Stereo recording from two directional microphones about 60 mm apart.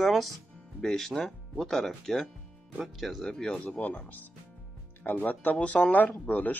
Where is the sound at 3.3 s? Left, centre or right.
Centre.